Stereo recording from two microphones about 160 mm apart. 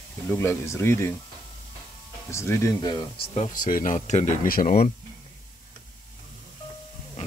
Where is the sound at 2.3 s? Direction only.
15° left (ahead or behind).